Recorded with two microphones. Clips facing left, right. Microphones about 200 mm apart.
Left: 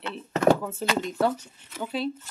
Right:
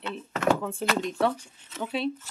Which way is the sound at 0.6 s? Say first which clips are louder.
Even; 5° left (ahead or behind).